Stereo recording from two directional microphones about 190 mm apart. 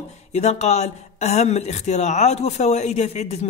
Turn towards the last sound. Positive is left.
turn(degrees=35)  # may be behind; listen again after turning